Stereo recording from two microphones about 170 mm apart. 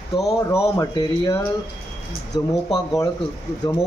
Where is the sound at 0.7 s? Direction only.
20° left (ahead or behind).